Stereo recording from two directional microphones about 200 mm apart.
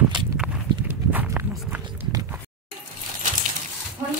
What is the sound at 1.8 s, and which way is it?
Clip-clop, 15° right (ahead or behind).